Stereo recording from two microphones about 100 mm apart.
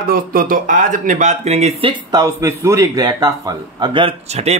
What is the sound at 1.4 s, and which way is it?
Speech, 90° right.